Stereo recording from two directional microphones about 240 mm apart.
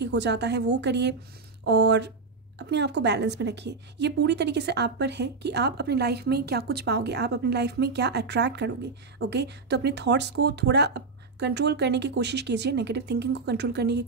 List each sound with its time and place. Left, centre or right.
0.0 s a woman's voice: right